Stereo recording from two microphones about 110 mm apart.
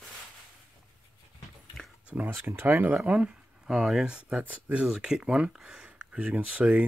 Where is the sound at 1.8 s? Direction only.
5° left (ahead or behind).